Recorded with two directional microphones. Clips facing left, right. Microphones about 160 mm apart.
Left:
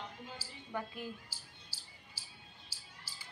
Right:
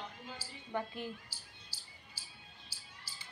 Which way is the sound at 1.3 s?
90° left.